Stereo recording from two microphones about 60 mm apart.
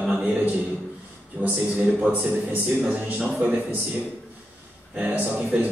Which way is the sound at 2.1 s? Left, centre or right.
Right.